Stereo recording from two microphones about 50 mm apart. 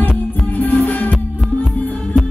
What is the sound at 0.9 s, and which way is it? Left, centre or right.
Music, left.